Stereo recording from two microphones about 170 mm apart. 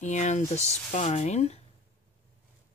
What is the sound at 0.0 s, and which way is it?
Speech, 45° left (ahead or behind).